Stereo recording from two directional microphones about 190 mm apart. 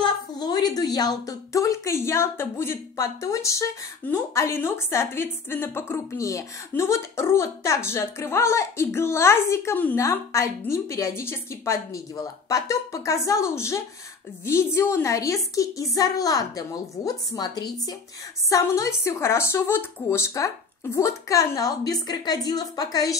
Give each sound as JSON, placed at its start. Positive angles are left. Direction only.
{"t": 0.0, "sound": "a woman's voice", "side_deg": 20}